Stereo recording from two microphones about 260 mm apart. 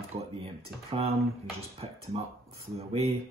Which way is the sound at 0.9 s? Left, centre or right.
Right.